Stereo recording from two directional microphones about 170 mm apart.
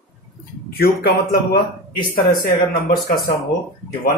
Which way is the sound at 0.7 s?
60° left (ahead or behind).